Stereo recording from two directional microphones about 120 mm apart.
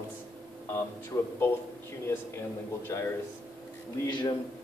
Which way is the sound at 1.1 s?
25° left (ahead or behind).